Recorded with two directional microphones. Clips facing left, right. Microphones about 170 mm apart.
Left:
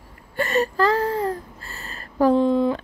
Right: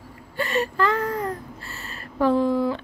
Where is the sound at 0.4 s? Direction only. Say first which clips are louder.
Left 3 dB; 40° left (ahead or behind).